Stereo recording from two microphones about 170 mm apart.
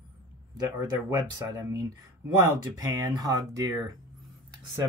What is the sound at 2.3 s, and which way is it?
Speech, 25° right (ahead or behind).